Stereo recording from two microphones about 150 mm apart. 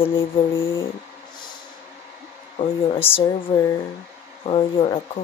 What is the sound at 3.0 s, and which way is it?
Speech, 15° left (ahead or behind).